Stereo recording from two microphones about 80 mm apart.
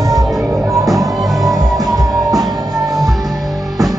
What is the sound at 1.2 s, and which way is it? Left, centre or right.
Music, centre.